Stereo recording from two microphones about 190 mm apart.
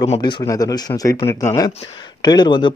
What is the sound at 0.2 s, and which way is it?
Speech, 20° left (ahead or behind).